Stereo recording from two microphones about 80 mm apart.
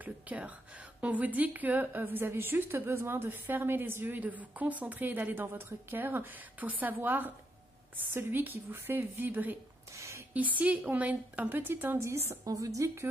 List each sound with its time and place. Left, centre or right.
0.0 s a woman's voice: centre
9.9 s a sound: right
10.3 s a woman's voice: centre; by 13.1 s right